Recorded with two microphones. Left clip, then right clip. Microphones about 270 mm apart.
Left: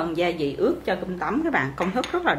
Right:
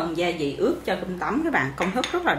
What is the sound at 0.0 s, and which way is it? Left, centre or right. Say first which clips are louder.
Speech: left 1 dB; centre.